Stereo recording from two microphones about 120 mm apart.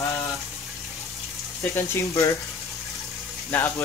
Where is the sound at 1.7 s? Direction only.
25° left (ahead or behind).